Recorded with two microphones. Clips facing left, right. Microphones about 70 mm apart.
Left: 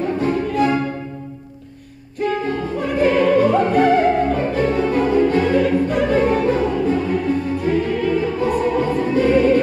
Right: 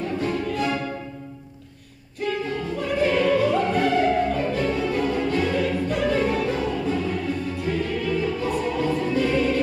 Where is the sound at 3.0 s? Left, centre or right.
Left.